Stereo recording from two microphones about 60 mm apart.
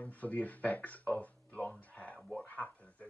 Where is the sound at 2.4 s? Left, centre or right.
Left.